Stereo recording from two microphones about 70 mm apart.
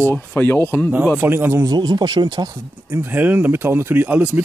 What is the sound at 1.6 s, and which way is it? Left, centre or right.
Speech, right.